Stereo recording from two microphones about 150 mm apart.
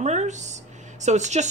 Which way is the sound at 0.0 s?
50° right (ahead or behind).